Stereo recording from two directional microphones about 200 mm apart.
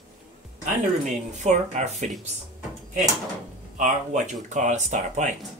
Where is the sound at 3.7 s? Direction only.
40° right (ahead or behind).